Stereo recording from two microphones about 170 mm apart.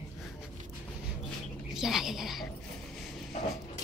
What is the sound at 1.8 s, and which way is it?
Speech, centre (ahead or behind).